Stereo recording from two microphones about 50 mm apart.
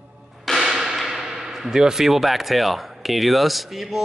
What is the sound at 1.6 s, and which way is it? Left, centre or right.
Speech, centre.